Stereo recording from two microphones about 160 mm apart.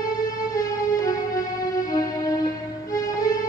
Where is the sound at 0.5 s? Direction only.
20° left (ahead or behind).